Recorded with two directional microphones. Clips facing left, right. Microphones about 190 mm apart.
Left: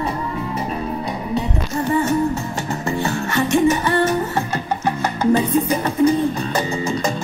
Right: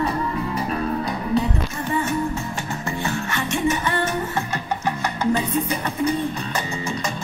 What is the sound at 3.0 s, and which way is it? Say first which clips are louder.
Music: left 6 dB; 40° left (ahead or behind).